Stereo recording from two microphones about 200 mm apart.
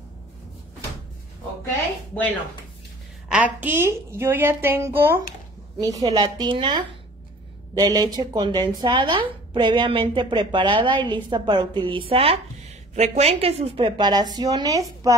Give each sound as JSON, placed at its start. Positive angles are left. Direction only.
{"t": 3.3, "sound": "a woman's voice", "side_deg": -5}